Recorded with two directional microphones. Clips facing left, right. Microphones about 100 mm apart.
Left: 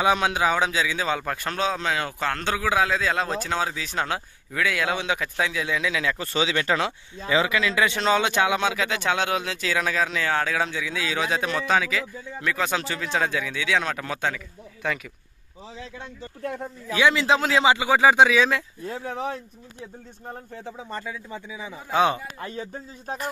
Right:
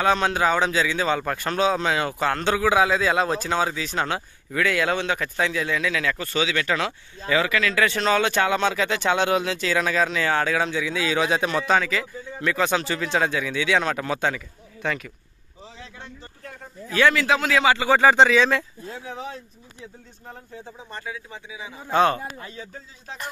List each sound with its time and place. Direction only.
0.0 s speech: 10° left (ahead or behind)
5.8 s speech: 15° left (ahead or behind); by 15.0 s centre (ahead or behind)
16.9 s a man's voice: 20° left (ahead or behind)
17.7 s speech: 10° left (ahead or behind)
18.9 s speech: 50° left (ahead or behind)
21.9 s speech: 10° left (ahead or behind)
22.4 s speech: 45° left (ahead or behind)